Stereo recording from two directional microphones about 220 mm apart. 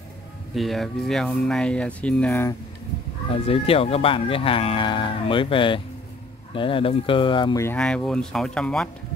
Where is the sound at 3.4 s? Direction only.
25° left (ahead or behind); by 8.9 s 5° left (ahead or behind).